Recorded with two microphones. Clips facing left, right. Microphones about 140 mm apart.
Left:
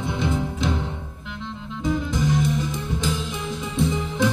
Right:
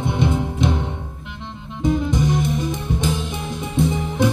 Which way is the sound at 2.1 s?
20° right (ahead or behind).